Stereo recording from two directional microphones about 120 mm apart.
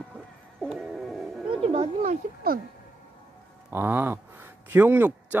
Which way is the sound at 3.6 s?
20° right (ahead or behind).